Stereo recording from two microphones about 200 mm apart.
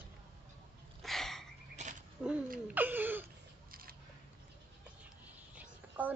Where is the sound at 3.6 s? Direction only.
45° right (ahead or behind).